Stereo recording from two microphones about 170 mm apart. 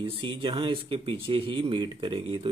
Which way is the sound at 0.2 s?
30° right (ahead or behind).